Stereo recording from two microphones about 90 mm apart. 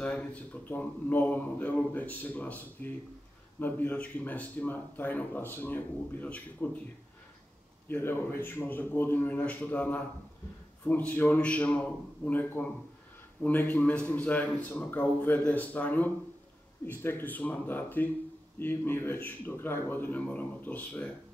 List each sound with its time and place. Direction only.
0.0 s speech: 15° left (ahead or behind)
7.9 s speech: 20° left (ahead or behind)